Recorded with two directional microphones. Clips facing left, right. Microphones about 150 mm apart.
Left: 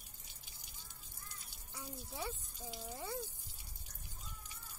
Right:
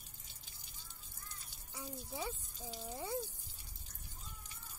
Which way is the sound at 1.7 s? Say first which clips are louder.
Right 3 dB; 10° right (ahead or behind).